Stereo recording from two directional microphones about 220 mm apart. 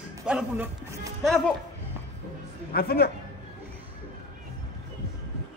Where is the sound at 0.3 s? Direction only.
5° right (ahead or behind).